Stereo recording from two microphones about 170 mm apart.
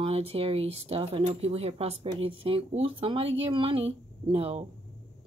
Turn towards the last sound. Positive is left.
turn(degrees=-35)  # may be behind; listen again after turning